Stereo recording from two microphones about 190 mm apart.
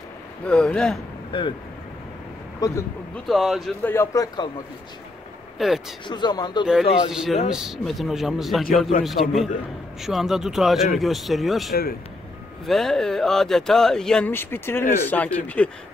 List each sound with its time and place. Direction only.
0.5 s speech: 5° left (ahead or behind)
2.6 s speech: 20° left (ahead or behind)
3.3 s speech: centre (ahead or behind)
3.8 s a man's voice: 15° left (ahead or behind)
5.6 s speech: centre (ahead or behind)
6.0 s speech: 25° left (ahead or behind)
6.6 s speech: 5° right (ahead or behind)